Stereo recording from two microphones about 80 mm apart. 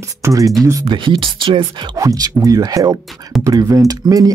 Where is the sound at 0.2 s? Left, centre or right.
Right.